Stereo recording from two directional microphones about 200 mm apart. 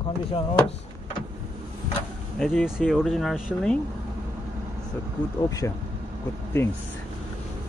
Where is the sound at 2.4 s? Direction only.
Centre (ahead or behind).